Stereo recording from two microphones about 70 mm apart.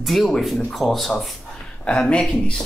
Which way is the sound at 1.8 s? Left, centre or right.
Centre.